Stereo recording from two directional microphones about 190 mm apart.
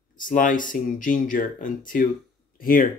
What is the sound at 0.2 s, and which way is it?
Speech, 45° left (ahead or behind).